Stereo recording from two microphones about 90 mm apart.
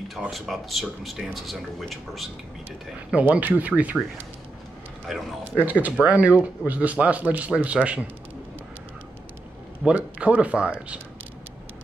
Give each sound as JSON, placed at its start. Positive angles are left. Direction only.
{"t": 0.3, "sound": "speech", "side_deg": 0}
{"t": 3.1, "sound": "speech", "side_deg": -15}
{"t": 5.1, "sound": "speech", "side_deg": 0}
{"t": 5.4, "sound": "speech", "side_deg": -20}
{"t": 9.8, "sound": "speech", "side_deg": -15}